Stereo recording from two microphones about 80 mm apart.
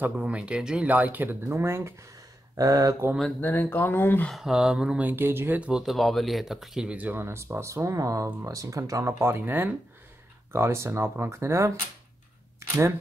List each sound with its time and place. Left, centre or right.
0.0 s speech: centre
2.5 s speech: right
3.3 s speech: left
4.3 s mantra: centre
5.0 s speech: right
5.6 s speech: centre
6.9 s speech: right
7.2 s speech: right
9.2 s speech: right
12.5 s a sound: right